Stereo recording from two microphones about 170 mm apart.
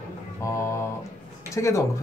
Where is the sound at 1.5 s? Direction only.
15° left (ahead or behind).